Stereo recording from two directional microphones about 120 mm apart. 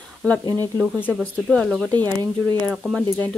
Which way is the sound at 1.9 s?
15° left (ahead or behind).